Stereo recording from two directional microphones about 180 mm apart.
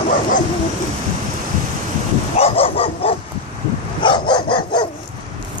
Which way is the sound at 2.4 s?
30° left (ahead or behind).